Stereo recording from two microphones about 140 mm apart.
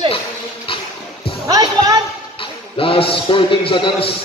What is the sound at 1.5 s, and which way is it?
Music, 25° right (ahead or behind).